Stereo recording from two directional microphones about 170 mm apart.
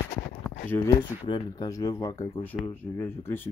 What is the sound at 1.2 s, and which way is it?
Speech, 25° left (ahead or behind).